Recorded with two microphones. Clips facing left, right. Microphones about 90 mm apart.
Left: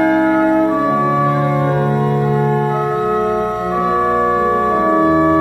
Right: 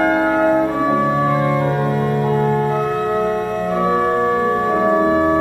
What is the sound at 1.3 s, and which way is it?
Music, 25° left (ahead or behind).